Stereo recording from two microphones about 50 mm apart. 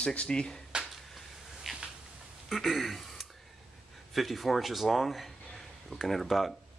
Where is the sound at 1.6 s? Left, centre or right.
Centre.